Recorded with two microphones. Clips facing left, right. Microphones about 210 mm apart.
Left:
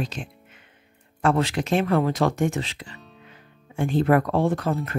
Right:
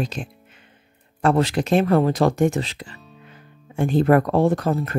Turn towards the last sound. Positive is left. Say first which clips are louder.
# right 4 dB
turn(degrees=-40)  # may be behind; listen again after turning